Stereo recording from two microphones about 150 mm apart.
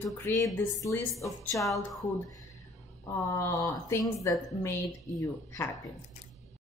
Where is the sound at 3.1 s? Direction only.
20° left (ahead or behind).